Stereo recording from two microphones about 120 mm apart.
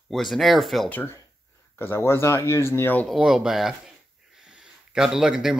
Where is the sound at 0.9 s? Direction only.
15° left (ahead or behind).